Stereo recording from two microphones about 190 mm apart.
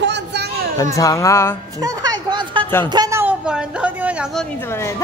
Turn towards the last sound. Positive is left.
turn(degrees=15)  # may be behind; listen again after turning